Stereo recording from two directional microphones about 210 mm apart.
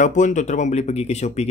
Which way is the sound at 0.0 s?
35° left (ahead or behind).